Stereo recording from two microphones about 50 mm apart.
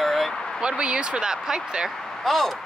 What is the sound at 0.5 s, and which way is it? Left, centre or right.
Speech, centre.